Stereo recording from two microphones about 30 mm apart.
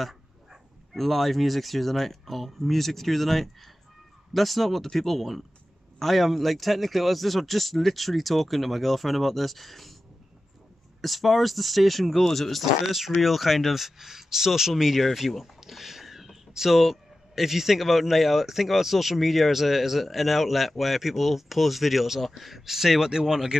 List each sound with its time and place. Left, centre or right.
0.9 s speech: centre
11.0 s speech: centre
12.8 s speech: centre
15.1 s speech: centre